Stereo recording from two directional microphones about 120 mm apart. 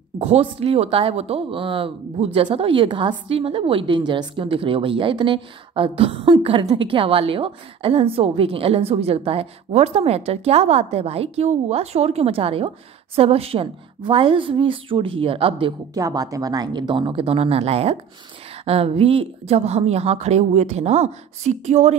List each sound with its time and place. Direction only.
0.2 s a woman's voice: 55° right (ahead or behind)
15.9 s a woman's voice: 30° right (ahead or behind); by 21.9 s 75° right (ahead or behind)